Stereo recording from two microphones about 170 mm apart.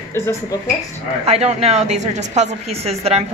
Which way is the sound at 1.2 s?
40° right (ahead or behind).